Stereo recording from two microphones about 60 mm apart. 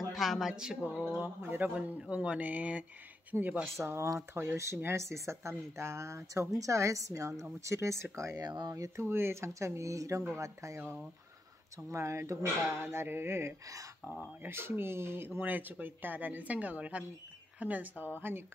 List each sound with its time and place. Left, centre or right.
0.1 s a woman's voice: centre
0.5 s a woman's voice: centre
1.2 s speech: right
1.8 s speech: centre
3.7 s a woman's voice: right
9.0 s a woman's voice: right
11.9 s speech: right